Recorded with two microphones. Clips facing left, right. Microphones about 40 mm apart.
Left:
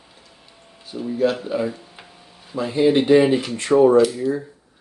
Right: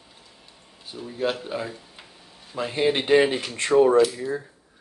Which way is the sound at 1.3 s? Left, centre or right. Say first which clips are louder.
Left 6 dB; centre.